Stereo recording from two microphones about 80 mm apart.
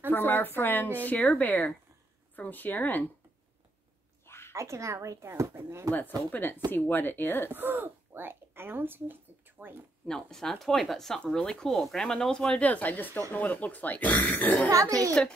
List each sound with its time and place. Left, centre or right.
0.1 s a man's voice: left
4.5 s speech: right
5.9 s a man's voice: left
7.5 s speech: right
10.0 s a man's voice: centre; by 14.7 s left
14.7 s speech: right